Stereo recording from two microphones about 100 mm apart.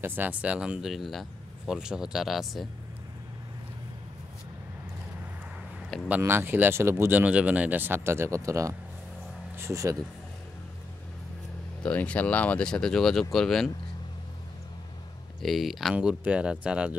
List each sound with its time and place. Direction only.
0.0 s speech: 20° right (ahead or behind); by 2.7 s centre (ahead or behind)
6.0 s speech: 20° right (ahead or behind)
11.8 s speech: 15° left (ahead or behind)
15.4 s speech: centre (ahead or behind)